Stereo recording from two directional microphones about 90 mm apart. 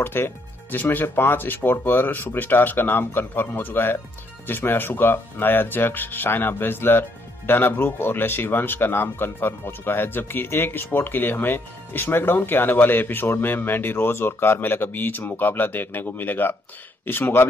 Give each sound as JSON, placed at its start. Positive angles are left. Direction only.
{"t": 0.0, "sound": "speech", "side_deg": 25}